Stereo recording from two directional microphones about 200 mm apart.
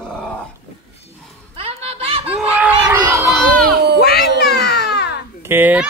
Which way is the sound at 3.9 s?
55° left (ahead or behind).